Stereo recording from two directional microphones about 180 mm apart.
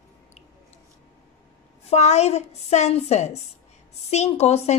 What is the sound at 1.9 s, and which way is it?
A woman's voice, 40° left (ahead or behind).